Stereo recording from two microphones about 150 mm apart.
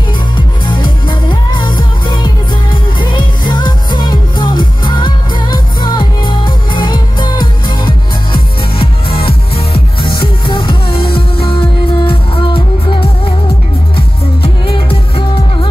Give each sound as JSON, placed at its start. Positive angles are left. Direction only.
{"t": 0.7, "sound": "music", "side_deg": 30}